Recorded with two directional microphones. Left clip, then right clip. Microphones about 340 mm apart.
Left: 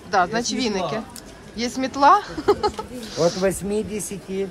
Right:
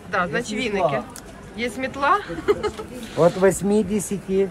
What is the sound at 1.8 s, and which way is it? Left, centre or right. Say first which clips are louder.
A woman's voice: left 5 dB; centre.